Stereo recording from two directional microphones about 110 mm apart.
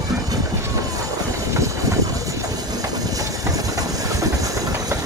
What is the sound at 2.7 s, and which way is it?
Train, 35° right (ahead or behind).